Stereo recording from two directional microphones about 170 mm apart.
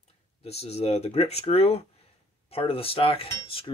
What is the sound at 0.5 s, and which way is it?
Speech, 40° left (ahead or behind).